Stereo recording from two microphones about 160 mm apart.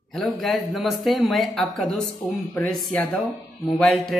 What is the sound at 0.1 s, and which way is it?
A man's voice, centre (ahead or behind).